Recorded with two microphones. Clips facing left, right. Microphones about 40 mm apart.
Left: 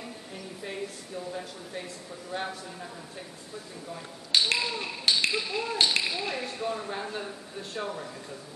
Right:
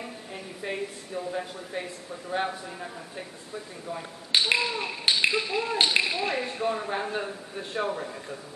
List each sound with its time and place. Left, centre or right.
0.0 s speech: right